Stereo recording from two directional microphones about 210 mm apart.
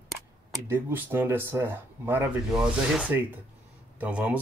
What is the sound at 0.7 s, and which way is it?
Speech, 10° right (ahead or behind).